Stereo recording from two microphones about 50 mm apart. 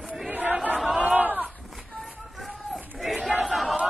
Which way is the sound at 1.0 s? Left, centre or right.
Right.